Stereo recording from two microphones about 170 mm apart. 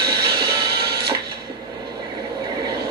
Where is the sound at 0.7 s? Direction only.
70° right (ahead or behind).